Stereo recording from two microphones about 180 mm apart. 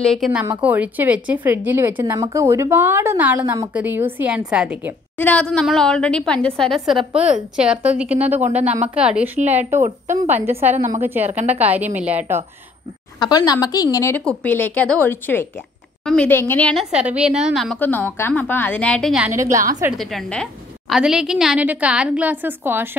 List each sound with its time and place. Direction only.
0.0 s a woman's voice: centre (ahead or behind)
5.1 s a woman's voice: 10° left (ahead or behind); by 12.4 s 10° right (ahead or behind)
13.2 s a woman's voice: 20° left (ahead or behind)
16.9 s a woman's voice: 5° right (ahead or behind)
17.8 s a woman's voice: 10° left (ahead or behind)
19.3 s a woman's voice: 15° right (ahead or behind)
19.9 s a woman's voice: centre (ahead or behind)